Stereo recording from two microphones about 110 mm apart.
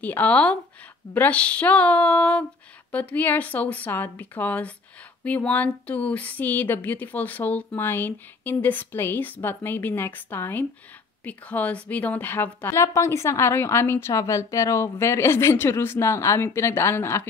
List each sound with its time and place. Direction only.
0.0 s a woman's voice: 15° left (ahead or behind)